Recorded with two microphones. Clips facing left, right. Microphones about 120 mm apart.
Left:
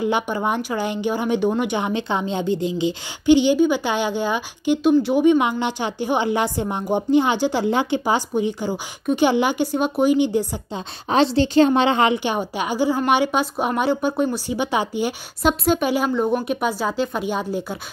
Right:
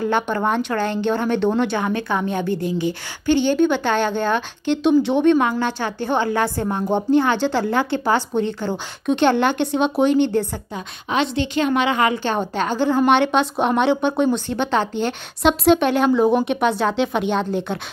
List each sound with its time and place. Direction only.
0.0 s speech: 10° left (ahead or behind)
11.1 s a woman's voice: 35° left (ahead or behind)
12.2 s a woman's voice: 10° left (ahead or behind)